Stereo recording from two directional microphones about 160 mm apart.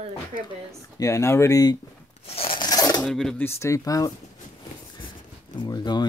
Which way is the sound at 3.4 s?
20° left (ahead or behind).